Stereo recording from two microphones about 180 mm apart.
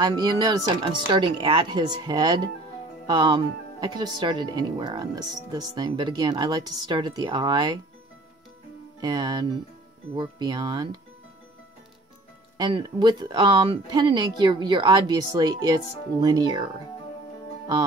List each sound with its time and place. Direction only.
0.0 s speech: 20° right (ahead or behind)
9.0 s speech: 25° right (ahead or behind)
12.5 s speech: 25° right (ahead or behind)